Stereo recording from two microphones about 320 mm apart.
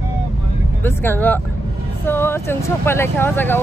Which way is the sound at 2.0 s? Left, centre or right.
Centre.